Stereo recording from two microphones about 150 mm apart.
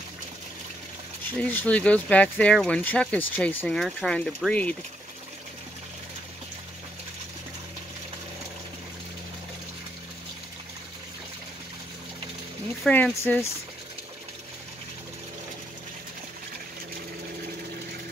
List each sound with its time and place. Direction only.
1.4 s speech: 10° left (ahead or behind)
12.8 s speech: 10° left (ahead or behind)